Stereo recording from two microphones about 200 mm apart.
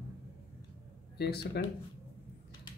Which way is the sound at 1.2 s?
55° left (ahead or behind).